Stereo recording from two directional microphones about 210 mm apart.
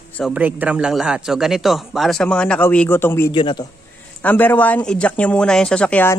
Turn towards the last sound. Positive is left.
turn(degrees=5)  # may be behind; listen again after turning